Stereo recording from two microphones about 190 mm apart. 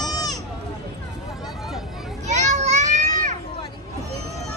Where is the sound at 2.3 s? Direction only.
40° right (ahead or behind).